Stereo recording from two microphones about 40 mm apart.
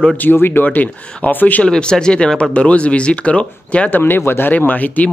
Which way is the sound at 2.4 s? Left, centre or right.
Left.